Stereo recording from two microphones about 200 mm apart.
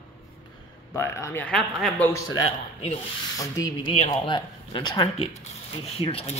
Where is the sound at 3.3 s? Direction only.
15° left (ahead or behind).